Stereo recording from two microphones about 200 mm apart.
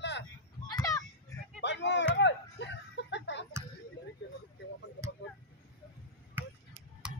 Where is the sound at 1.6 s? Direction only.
60° left (ahead or behind).